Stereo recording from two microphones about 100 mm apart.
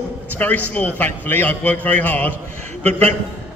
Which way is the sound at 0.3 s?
15° left (ahead or behind).